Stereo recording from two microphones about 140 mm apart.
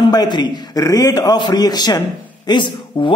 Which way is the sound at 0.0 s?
30° left (ahead or behind).